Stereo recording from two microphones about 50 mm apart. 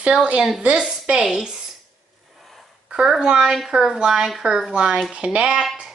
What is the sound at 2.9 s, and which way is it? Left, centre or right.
A woman's voice, centre.